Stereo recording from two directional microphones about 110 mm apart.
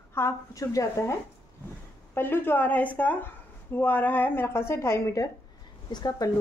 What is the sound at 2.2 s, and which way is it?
A woman's voice, 20° left (ahead or behind).